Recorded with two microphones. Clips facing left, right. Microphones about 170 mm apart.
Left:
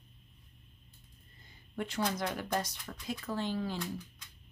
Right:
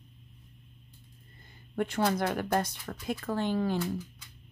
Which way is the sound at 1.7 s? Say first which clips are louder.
Right 6 dB; 55° right (ahead or behind).